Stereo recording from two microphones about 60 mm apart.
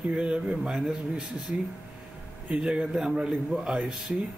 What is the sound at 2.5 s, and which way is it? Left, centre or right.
Speech, centre.